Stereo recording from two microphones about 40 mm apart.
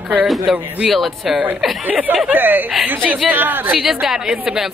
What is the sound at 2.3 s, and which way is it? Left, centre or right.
A woman's voice, right.